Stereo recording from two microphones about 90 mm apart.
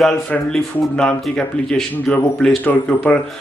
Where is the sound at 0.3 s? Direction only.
10° left (ahead or behind).